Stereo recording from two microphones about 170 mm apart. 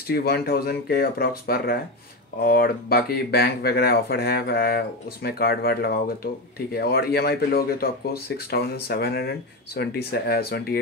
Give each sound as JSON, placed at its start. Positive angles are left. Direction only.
{"t": 0.1, "sound": "speech", "side_deg": 65}